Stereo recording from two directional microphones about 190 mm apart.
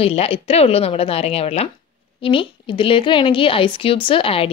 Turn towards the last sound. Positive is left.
turn(degrees=30)  # may be behind; listen again after turning